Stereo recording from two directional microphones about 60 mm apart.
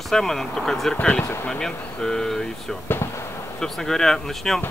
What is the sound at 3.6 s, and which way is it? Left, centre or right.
Speech, centre.